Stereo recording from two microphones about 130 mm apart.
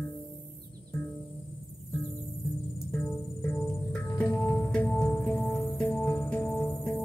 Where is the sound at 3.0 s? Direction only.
20° left (ahead or behind).